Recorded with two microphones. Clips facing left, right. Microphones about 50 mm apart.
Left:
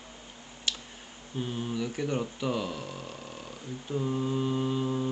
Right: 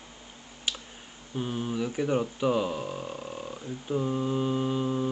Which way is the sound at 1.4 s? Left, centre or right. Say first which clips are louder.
Right 2 dB; centre.